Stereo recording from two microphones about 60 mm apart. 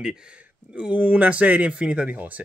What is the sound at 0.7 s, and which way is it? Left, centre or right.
Speech, right.